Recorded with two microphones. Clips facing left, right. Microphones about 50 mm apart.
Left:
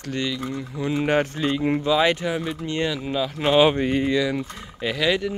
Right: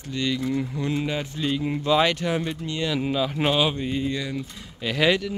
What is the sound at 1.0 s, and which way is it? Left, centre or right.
Speech, left.